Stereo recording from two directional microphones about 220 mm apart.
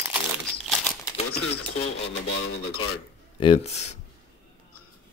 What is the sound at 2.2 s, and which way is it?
Radio, 45° left (ahead or behind).